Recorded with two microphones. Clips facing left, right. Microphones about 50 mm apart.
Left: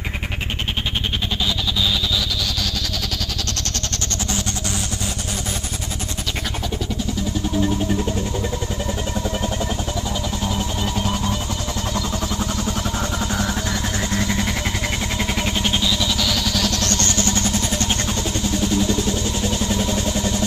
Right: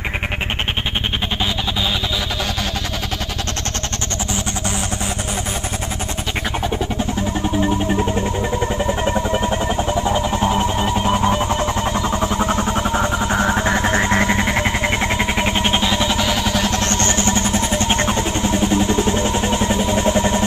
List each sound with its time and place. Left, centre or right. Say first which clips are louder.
7.2 s music: right 2 dB; right